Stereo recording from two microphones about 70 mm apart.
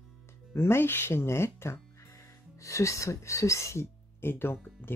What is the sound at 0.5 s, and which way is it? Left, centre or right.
Speech, left.